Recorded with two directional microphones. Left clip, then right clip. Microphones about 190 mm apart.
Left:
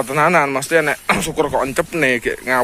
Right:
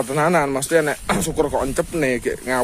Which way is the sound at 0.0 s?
10° right (ahead or behind).